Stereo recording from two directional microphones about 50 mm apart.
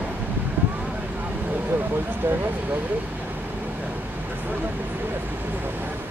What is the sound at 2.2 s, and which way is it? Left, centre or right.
Vehicle, right.